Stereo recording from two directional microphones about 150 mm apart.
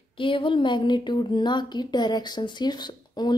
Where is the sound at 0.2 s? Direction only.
35° left (ahead or behind).